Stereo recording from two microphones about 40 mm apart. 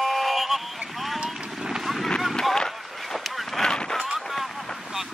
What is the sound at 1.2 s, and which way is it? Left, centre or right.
Vehicle, centre.